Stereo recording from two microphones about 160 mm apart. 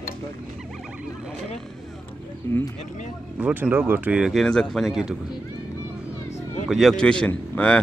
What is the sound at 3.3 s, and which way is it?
Speech, 5° right (ahead or behind).